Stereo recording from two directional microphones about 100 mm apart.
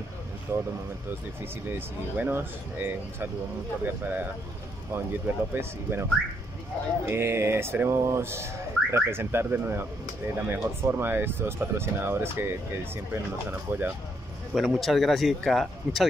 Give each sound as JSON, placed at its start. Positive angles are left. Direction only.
{"t": 0.5, "sound": "speech", "side_deg": -25}
{"t": 7.1, "sound": "speech", "side_deg": -25}
{"t": 14.5, "sound": "speech", "side_deg": 0}